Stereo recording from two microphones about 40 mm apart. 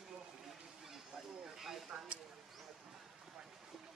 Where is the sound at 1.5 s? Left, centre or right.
Centre.